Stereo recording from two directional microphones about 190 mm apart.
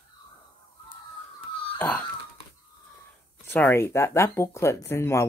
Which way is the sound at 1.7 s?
10° left (ahead or behind).